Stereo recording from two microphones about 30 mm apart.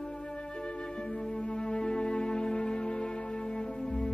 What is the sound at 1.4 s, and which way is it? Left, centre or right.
Music, left.